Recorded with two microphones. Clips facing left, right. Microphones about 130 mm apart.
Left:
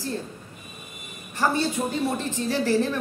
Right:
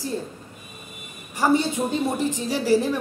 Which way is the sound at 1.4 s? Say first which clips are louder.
Right 3 dB; 15° right (ahead or behind).